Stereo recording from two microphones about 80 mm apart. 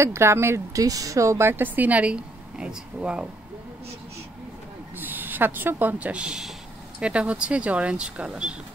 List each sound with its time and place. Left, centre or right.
0.0 s speech: right
0.8 s a woman's voice: right; by 3.3 s centre
4.9 s a woman's voice: right